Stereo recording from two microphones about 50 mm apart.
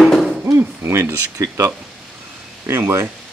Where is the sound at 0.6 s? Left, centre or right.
Right.